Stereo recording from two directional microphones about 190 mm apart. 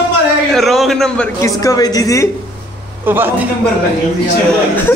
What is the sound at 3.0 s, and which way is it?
Speech, 10° right (ahead or behind).